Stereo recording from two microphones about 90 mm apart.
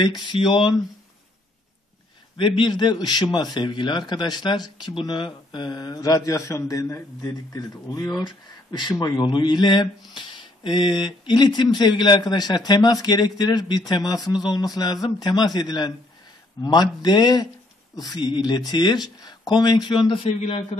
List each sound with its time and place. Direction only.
0.0 s a man's voice: 60° left (ahead or behind)
2.3 s a man's voice: 65° left (ahead or behind); by 8.2 s 45° left (ahead or behind)
9.0 s speech: 55° left (ahead or behind); by 20.6 s 80° left